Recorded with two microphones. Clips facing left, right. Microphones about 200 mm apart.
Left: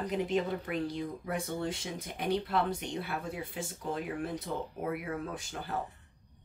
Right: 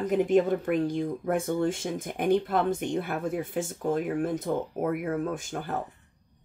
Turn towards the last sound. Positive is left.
turn(degrees=-50)  # may be behind; listen again after turning